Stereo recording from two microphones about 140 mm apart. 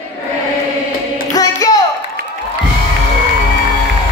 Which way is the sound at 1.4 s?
25° left (ahead or behind).